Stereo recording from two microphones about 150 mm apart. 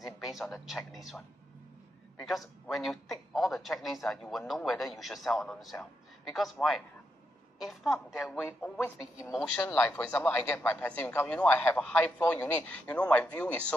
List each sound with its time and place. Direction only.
0.2 s a man's voice: centre (ahead or behind)
8.4 s speech: 15° left (ahead or behind)